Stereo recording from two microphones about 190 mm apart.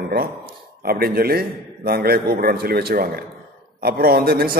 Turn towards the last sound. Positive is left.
turn(degrees=-55)  # may be behind; listen again after turning